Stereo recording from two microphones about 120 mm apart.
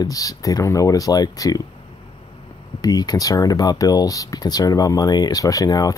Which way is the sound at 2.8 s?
35° left (ahead or behind).